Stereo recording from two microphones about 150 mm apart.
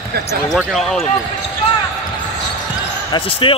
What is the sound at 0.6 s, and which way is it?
Speech, centre (ahead or behind).